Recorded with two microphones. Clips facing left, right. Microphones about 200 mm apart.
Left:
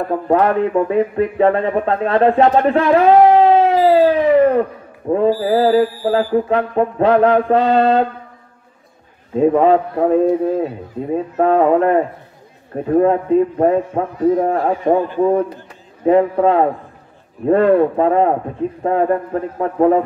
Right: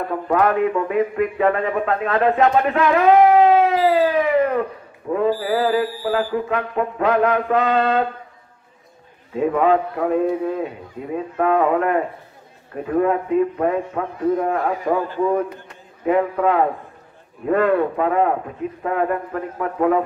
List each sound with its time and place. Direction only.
0.1 s speech: 30° left (ahead or behind)
5.1 s a man's voice: 35° left (ahead or behind)
9.4 s a man's voice: 30° left (ahead or behind)